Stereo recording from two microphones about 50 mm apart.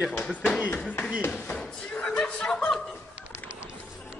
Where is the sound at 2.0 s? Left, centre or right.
Left.